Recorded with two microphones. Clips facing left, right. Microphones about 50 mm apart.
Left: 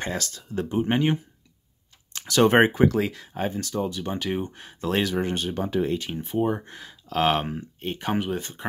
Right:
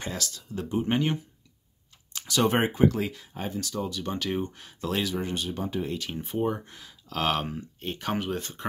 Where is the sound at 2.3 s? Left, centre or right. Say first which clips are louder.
Left 6 dB; left.